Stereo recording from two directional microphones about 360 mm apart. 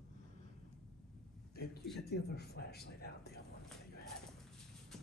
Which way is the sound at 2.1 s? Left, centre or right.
Left.